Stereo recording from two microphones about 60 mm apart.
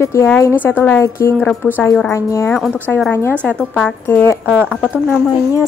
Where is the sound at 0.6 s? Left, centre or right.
Left.